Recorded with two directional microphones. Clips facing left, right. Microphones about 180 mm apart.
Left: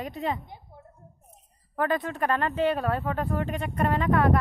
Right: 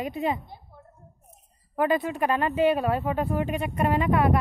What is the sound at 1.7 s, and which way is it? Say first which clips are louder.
Speech: right 3 dB; 10° right (ahead or behind).